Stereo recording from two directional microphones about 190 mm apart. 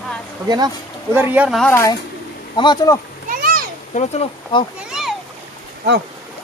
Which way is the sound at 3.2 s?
50° right (ahead or behind).